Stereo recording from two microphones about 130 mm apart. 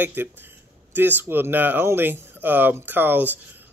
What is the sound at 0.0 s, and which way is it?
Speech, 15° right (ahead or behind).